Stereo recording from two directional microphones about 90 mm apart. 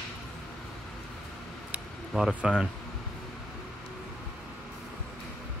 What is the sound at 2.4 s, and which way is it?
Speech, 5° right (ahead or behind).